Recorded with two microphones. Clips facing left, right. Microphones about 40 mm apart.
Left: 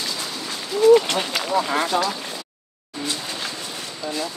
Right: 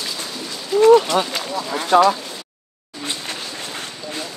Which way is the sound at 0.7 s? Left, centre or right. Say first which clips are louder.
Right 3 dB; right.